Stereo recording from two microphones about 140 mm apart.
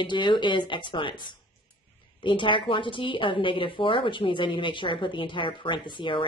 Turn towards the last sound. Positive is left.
turn(degrees=35)  # may be behind; listen again after turning